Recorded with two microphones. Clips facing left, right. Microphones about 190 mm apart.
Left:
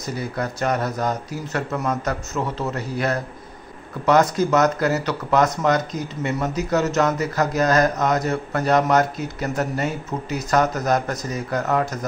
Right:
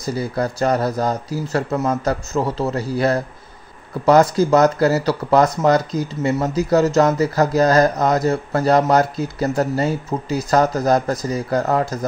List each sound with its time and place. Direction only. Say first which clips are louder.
0.0 s speech: right 5 dB; 35° right (ahead or behind)